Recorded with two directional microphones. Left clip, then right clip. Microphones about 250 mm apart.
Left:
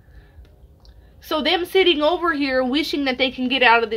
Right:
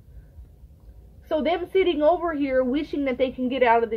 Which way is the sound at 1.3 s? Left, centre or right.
Left.